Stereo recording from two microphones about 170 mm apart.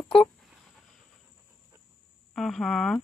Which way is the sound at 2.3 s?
Centre (ahead or behind).